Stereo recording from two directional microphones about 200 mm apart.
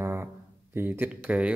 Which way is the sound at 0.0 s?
10° right (ahead or behind).